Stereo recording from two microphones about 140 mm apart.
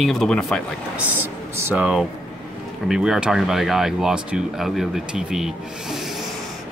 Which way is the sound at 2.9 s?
5° right (ahead or behind).